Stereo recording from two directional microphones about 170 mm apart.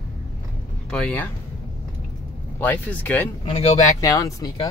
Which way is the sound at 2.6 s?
10° left (ahead or behind).